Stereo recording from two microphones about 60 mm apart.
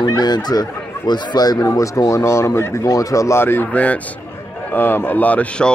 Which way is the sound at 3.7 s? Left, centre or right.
Left.